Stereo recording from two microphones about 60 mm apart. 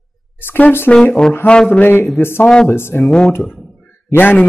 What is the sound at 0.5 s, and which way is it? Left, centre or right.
A man's voice, left.